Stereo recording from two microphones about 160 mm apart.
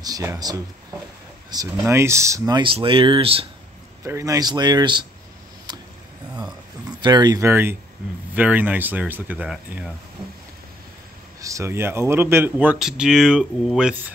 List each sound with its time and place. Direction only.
0.0 s speech: 20° right (ahead or behind); by 3.4 s 35° right (ahead or behind)
4.0 s speech: 20° right (ahead or behind)
5.7 s a sound: 25° right (ahead or behind)
7.0 s speech: 25° right (ahead or behind); by 9.9 s 5° right (ahead or behind)
11.4 s speech: 20° right (ahead or behind)